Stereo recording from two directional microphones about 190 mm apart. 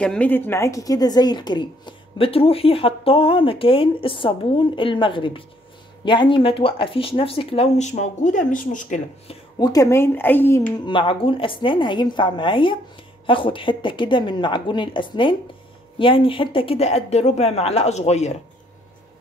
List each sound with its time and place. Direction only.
0.0 s a woman's voice: 5° left (ahead or behind); by 9.0 s 45° left (ahead or behind)
9.3 s speech: 20° left (ahead or behind)
10.9 s a woman's voice: 25° left (ahead or behind)